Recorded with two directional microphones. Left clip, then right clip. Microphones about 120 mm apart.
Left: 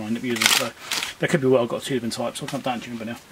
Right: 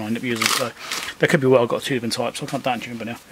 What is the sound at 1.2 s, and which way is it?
Speech, 35° right (ahead or behind).